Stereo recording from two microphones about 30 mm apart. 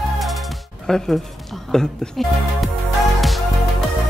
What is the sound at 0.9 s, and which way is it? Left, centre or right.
Speech, left.